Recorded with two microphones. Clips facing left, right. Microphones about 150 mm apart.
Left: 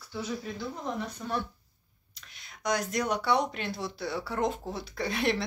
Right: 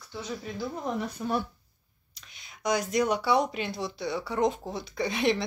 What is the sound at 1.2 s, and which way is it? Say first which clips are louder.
Speech: right 5 dB; 15° right (ahead or behind).